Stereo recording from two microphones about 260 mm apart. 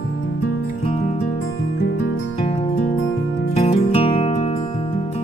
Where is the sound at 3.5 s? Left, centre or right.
Left.